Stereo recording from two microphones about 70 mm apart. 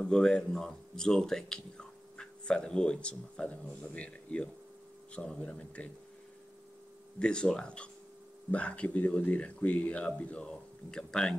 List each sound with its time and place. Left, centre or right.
0.0 s speech: centre
7.2 s speech: centre